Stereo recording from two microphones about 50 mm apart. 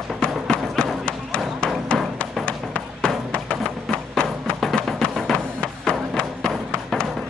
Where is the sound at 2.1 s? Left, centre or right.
Left.